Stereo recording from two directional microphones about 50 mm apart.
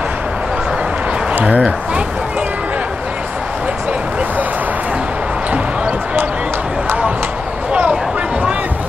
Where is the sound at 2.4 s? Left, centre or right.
Right.